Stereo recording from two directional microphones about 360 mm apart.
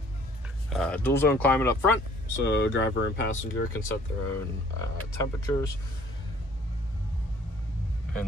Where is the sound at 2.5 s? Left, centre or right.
Left.